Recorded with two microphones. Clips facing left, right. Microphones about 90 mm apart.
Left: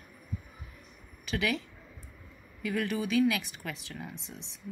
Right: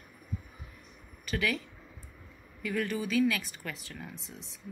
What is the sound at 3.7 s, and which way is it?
Speech, 25° left (ahead or behind).